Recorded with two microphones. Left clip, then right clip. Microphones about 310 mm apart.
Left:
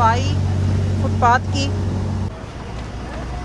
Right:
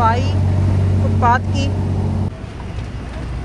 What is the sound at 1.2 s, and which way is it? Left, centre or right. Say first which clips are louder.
Speech: even; centre.